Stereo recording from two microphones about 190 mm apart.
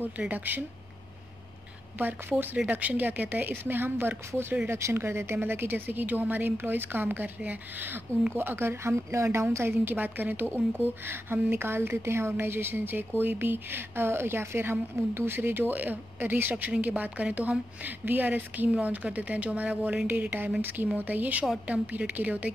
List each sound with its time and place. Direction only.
0.0 s speech: 10° right (ahead or behind)
2.0 s speech: 10° right (ahead or behind)